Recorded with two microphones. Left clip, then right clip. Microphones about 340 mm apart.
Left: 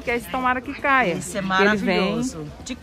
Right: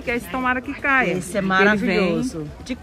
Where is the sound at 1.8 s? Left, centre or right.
Left.